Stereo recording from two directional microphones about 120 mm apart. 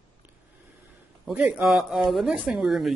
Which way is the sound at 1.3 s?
5° right (ahead or behind).